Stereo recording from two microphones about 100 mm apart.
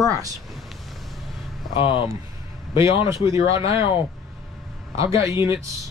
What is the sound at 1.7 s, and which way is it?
Speech, 55° left (ahead or behind).